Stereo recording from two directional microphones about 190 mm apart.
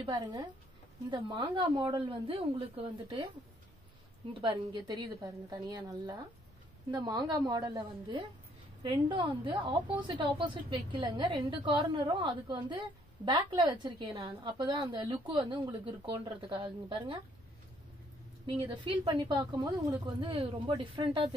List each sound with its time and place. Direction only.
0.0 s a woman's voice: 20° right (ahead or behind)
4.3 s a woman's voice: 25° right (ahead or behind)
18.6 s a woman's voice: 25° right (ahead or behind)